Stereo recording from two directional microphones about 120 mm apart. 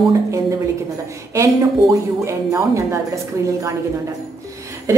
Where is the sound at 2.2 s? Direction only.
25° right (ahead or behind).